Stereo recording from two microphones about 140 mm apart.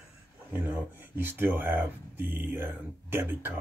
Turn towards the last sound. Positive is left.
turn(degrees=-15)  # may be behind; listen again after turning